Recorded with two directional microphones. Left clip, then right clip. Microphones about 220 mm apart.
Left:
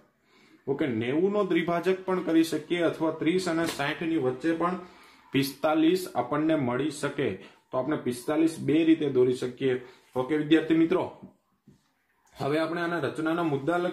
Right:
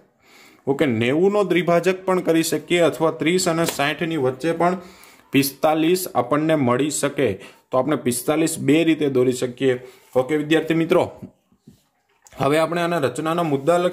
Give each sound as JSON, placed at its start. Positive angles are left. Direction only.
{"t": 0.7, "sound": "speech", "side_deg": -50}
{"t": 5.3, "sound": "speech", "side_deg": -40}
{"t": 12.4, "sound": "speech", "side_deg": -45}